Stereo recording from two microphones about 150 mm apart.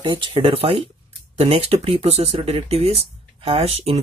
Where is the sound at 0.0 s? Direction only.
35° right (ahead or behind).